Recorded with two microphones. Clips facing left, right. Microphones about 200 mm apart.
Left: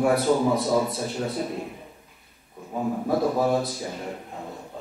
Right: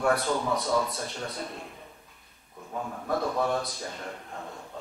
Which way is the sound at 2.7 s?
25° left (ahead or behind).